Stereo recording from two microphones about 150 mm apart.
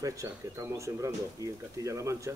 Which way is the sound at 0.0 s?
20° right (ahead or behind).